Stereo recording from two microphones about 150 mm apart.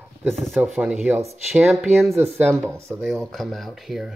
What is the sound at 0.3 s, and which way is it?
Speech, centre (ahead or behind).